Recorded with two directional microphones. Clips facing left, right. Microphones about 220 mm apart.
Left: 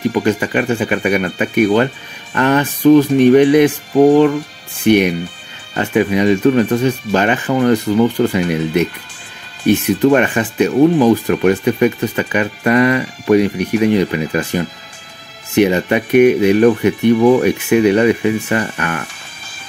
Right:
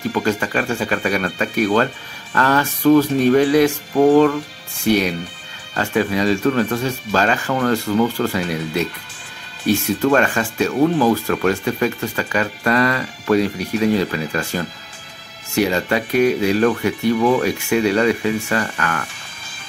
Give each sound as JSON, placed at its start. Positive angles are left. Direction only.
{"t": 0.1, "sound": "speech", "side_deg": 20}